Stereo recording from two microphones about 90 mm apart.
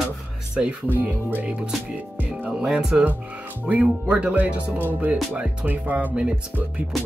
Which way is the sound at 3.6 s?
15° right (ahead or behind).